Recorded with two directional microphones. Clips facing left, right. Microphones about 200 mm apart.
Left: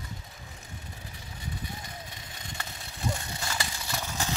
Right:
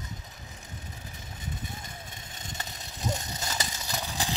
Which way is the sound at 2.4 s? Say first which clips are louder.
Right 1 dB; 20° right (ahead or behind).